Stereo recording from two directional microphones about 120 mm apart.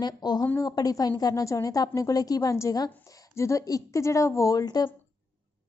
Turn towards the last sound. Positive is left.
turn(degrees=35)  # may be behind; listen again after turning